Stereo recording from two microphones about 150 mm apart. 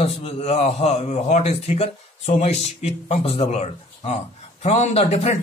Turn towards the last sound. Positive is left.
turn(degrees=45)  # may be behind; listen again after turning